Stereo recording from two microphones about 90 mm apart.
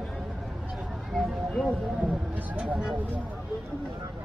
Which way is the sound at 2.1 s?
15° right (ahead or behind).